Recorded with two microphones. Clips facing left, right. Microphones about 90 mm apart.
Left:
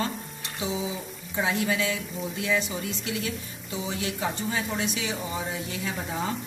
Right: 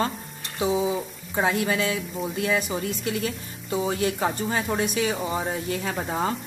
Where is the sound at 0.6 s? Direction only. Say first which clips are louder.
Right 7 dB; 50° right (ahead or behind).